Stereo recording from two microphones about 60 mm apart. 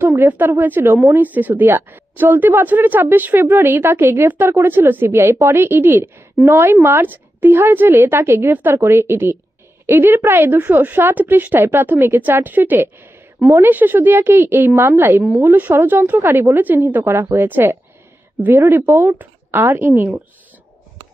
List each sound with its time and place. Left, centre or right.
0.0 s a woman's voice: right
0.3 s a woman's voice: right
3.5 s a woman's voice: right
15.7 s a woman's voice: right
16.2 s a woman's voice: right